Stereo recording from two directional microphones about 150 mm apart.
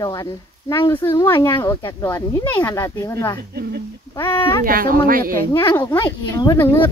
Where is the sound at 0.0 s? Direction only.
25° left (ahead or behind).